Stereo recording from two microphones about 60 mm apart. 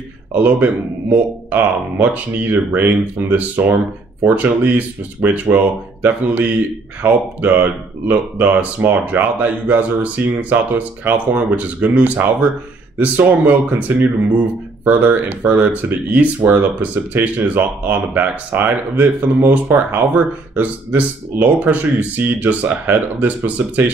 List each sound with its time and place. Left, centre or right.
0.3 s speech: right